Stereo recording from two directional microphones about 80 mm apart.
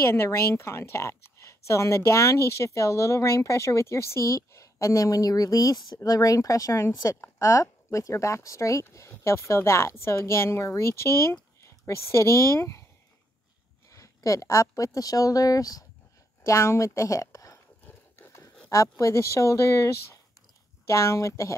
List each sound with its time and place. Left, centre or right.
0.0 s a woman's voice: left
13.9 s speech: left
16.4 s a woman's voice: left
17.8 s horse: left
18.7 s a woman's voice: left